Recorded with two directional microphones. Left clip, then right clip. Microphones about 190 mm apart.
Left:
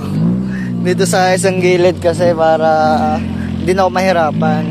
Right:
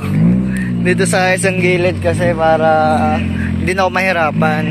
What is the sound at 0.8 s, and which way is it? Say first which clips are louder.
Speech: left 1 dB; 10° left (ahead or behind).